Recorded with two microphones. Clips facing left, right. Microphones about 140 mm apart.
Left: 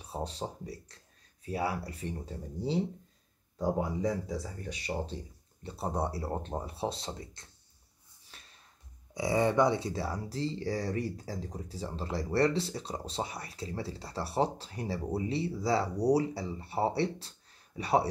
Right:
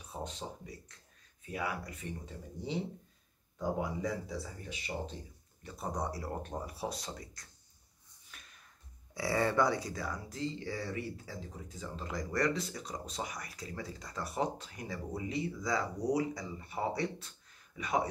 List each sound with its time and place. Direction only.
0.0 s speech: 35° left (ahead or behind)
4.3 s speech: 45° left (ahead or behind)
8.3 s a sound: 30° left (ahead or behind)
9.1 s speech: 20° left (ahead or behind)